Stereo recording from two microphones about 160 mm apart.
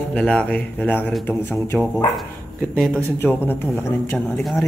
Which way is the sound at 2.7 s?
Centre (ahead or behind).